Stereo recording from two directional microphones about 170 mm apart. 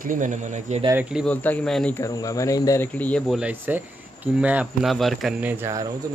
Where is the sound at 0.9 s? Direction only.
5° right (ahead or behind).